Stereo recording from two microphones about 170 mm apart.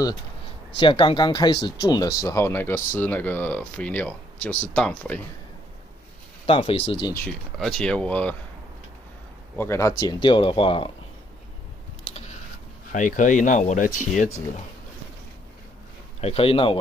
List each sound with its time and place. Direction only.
0.7 s speech: 30° left (ahead or behind); by 5.2 s 5° left (ahead or behind)
6.4 s speech: 35° left (ahead or behind)
7.5 s speech: centre (ahead or behind)
9.6 s speech: 15° left (ahead or behind)
12.9 s speech: 50° left (ahead or behind)
16.2 s speech: 35° left (ahead or behind)